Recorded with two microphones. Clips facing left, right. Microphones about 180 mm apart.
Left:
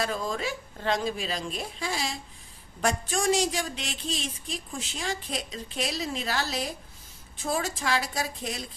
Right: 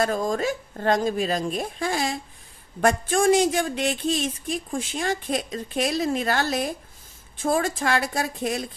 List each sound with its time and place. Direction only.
0.0 s speech: 45° right (ahead or behind)